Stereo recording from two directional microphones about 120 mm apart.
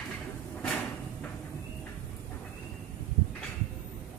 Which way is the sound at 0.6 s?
10° left (ahead or behind).